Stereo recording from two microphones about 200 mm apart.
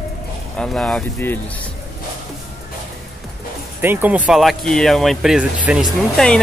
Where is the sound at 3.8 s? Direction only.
10° right (ahead or behind).